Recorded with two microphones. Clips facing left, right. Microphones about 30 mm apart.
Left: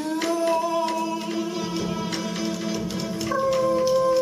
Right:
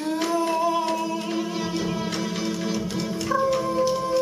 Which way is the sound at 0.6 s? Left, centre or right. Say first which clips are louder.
Right 1 dB; centre.